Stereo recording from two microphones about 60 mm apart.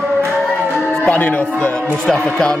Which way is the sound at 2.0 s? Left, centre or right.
Centre.